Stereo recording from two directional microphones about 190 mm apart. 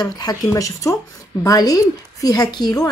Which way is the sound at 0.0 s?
20° left (ahead or behind).